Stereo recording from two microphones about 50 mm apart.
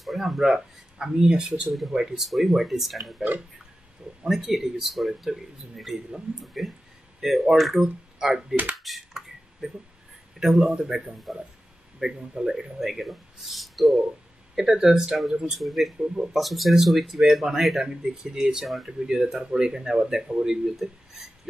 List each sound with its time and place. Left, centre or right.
0.0 s speech: centre
0.9 s speech: centre
1.7 s speech: centre
8.7 s finger snapping: centre
10.4 s speech: centre